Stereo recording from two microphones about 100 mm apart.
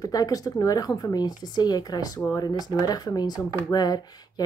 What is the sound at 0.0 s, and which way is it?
Speech, 40° left (ahead or behind).